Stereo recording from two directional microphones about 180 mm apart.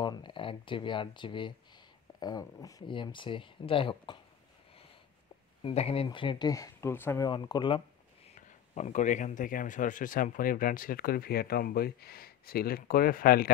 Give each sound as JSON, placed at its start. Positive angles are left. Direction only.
{"t": 0.0, "sound": "speech", "side_deg": 25}
{"t": 5.6, "sound": "speech", "side_deg": 30}
{"t": 7.2, "sound": "speech", "side_deg": 25}
{"t": 8.4, "sound": "speech", "side_deg": 40}